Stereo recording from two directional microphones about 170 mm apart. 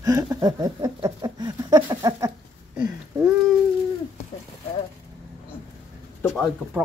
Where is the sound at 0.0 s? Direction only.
20° right (ahead or behind).